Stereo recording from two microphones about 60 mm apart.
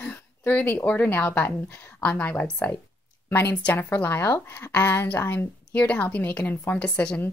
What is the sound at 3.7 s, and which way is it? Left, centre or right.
Speech, left.